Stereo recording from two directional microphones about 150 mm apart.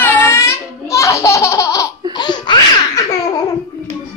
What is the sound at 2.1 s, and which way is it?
Laughter, 30° left (ahead or behind).